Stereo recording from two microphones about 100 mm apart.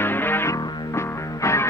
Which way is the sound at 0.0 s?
20° left (ahead or behind).